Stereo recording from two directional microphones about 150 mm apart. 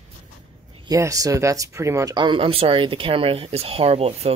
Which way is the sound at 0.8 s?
20° right (ahead or behind).